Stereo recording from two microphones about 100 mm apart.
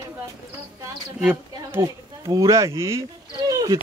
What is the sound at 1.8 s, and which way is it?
Speech, 35° right (ahead or behind).